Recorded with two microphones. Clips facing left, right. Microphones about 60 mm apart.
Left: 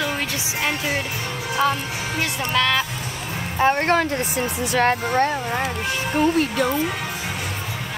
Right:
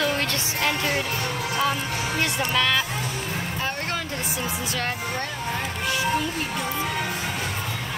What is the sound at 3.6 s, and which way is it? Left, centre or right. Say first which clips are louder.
Speech: left 14 dB; left.